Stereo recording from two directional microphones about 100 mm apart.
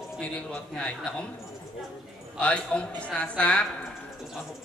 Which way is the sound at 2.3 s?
10° left (ahead or behind).